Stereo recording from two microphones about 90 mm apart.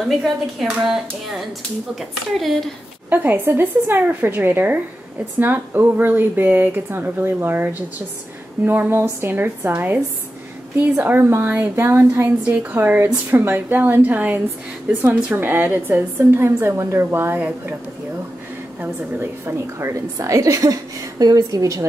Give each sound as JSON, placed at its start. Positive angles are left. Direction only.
{"t": 0.1, "sound": "speech", "side_deg": 0}
{"t": 3.1, "sound": "speech", "side_deg": -25}
{"t": 18.8, "sound": "a woman's voice", "side_deg": -25}